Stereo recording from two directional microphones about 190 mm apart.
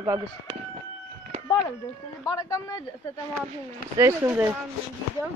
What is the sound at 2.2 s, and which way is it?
Speech, 20° left (ahead or behind).